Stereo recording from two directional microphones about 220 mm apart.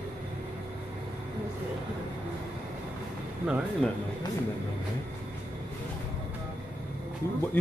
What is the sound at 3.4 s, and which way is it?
Speech, 5° right (ahead or behind).